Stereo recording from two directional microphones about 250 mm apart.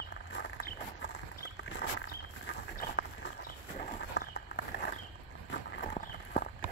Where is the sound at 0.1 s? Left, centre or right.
Left.